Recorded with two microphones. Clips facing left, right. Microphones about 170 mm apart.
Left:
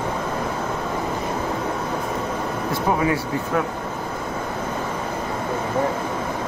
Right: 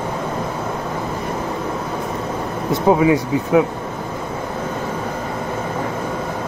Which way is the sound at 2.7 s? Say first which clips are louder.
Right 8 dB; 20° right (ahead or behind).